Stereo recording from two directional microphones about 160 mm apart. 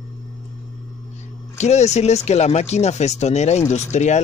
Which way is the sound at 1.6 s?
45° left (ahead or behind).